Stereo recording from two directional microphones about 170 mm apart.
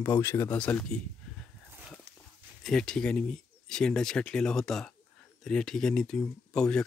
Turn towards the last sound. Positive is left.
turn(degrees=5)  # may be behind; listen again after turning